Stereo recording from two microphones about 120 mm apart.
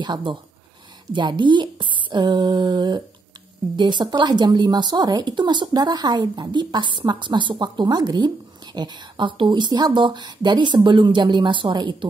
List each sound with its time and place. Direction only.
0.0 s speech: 40° right (ahead or behind)